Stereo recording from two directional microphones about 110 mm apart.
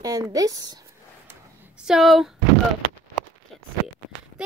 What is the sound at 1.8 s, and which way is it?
Speech, 5° right (ahead or behind).